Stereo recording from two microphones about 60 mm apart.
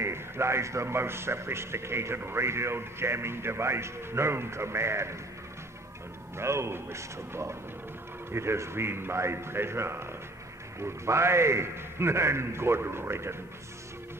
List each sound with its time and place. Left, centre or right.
0.0 s a man's voice: right
6.3 s a man's voice: right